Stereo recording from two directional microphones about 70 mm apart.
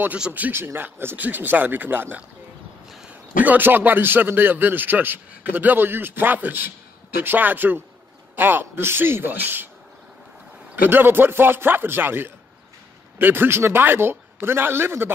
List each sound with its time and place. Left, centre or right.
0.3 s a man's voice: right
3.4 s a man's voice: right
10.9 s a man's voice: right